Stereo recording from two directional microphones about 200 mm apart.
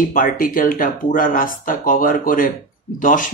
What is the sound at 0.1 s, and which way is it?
Speech, 45° left (ahead or behind).